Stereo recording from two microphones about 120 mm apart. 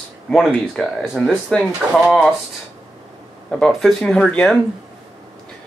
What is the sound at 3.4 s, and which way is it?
Speech, centre (ahead or behind).